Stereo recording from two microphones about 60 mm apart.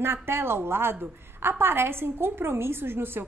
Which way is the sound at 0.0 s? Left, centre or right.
Right.